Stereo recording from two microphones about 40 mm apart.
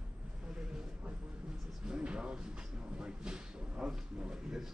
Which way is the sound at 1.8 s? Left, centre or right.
Right.